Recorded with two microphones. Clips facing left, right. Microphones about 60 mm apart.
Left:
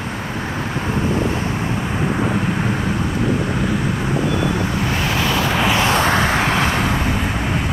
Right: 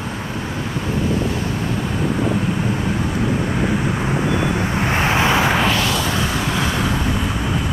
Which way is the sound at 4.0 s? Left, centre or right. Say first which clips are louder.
Even; right.